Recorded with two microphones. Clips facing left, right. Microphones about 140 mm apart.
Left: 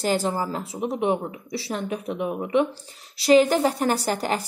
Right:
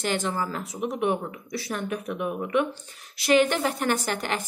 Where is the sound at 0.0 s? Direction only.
35° left (ahead or behind).